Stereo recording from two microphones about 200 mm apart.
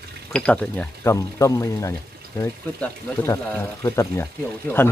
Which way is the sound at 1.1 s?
15° left (ahead or behind).